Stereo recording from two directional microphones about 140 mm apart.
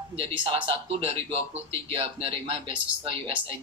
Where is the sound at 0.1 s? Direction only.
40° right (ahead or behind).